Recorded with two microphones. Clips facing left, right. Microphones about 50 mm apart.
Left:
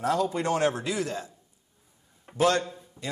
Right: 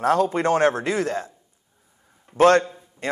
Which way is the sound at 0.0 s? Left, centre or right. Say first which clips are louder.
Right 6 dB; right.